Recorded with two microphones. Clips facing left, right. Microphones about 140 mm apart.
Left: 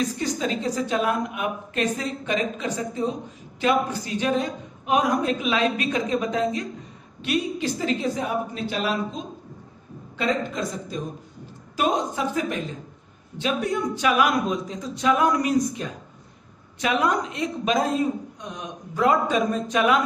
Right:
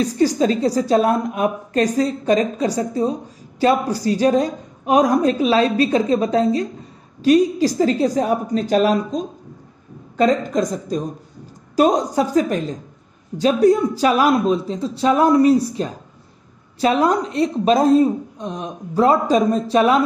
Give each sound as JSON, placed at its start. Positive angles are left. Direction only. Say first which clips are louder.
{"t": 0.0, "sound": "a woman's voice", "louder": "right 9 dB", "side_deg": -35}